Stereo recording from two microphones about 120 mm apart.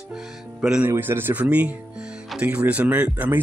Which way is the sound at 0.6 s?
5° right (ahead or behind).